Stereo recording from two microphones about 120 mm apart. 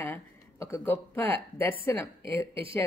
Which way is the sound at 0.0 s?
20° left (ahead or behind).